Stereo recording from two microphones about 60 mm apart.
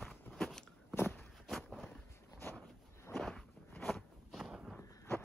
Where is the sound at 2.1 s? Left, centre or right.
Left.